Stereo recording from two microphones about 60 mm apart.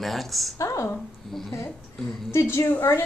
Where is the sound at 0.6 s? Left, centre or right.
Left.